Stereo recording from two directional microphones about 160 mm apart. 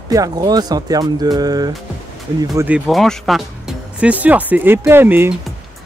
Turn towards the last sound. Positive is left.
turn(degrees=-15)  # may be behind; listen again after turning